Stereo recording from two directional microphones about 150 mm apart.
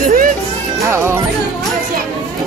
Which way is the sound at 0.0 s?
65° right (ahead or behind).